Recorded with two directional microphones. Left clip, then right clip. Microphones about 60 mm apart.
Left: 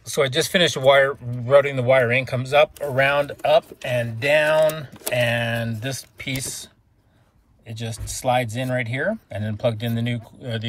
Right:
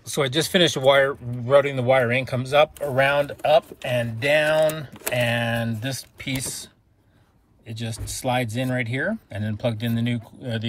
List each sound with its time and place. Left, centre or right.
0.0 s speech: right
3.0 s speech: right
4.2 s speech: centre
4.5 s speech: right
5.1 s speech: centre
5.4 s speech: right
5.8 s speech: right
7.6 s speech: centre
9.5 s speech: right
10.2 s speech: right